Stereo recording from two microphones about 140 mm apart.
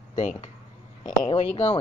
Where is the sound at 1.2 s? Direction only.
45° left (ahead or behind).